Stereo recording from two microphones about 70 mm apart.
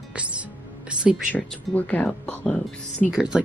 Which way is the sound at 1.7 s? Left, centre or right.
Left.